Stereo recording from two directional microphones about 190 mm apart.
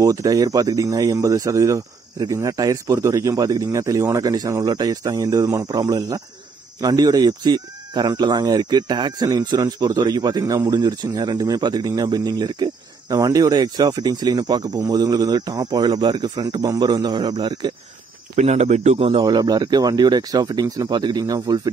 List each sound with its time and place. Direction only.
0.0 s speech: 15° right (ahead or behind)
18.3 s speech: 35° right (ahead or behind)
19.2 s speech: 20° right (ahead or behind)